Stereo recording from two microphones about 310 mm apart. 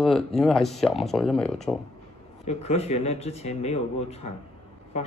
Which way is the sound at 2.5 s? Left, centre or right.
Left.